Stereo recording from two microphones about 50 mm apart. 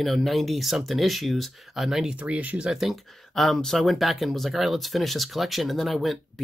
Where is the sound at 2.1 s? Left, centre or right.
Right.